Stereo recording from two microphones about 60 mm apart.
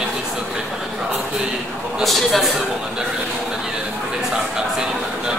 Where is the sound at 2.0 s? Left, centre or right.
Centre.